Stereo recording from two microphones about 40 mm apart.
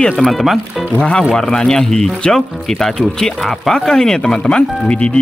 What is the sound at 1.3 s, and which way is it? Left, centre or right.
Speech, centre.